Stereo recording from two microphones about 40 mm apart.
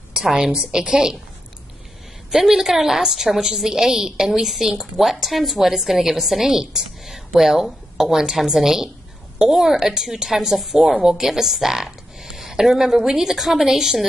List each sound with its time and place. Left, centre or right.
0.2 s a woman's voice: centre
2.3 s a woman's voice: centre